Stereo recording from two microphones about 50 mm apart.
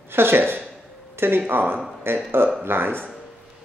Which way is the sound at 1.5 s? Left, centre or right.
Right.